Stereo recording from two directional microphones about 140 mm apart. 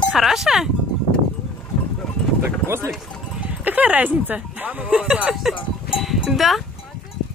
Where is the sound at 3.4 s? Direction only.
10° right (ahead or behind).